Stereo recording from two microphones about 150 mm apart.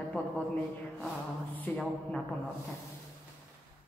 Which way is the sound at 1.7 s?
10° left (ahead or behind).